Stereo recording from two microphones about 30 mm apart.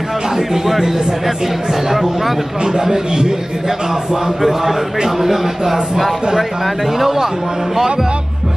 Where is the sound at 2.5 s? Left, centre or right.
Right.